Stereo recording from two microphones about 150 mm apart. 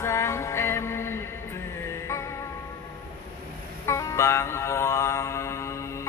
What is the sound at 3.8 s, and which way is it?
Mantra, 20° left (ahead or behind).